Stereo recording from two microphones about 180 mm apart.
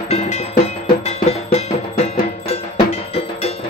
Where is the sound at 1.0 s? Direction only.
35° left (ahead or behind).